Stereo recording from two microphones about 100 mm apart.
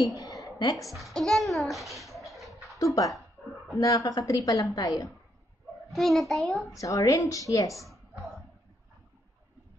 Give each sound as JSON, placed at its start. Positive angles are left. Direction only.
{"t": 0.1, "sound": "a sound", "side_deg": 35}
{"t": 0.7, "sound": "a child's voice", "side_deg": 0}
{"t": 2.8, "sound": "a woman's voice", "side_deg": 35}
{"t": 5.9, "sound": "a child's voice", "side_deg": 0}
{"t": 6.8, "sound": "a woman's voice", "side_deg": 35}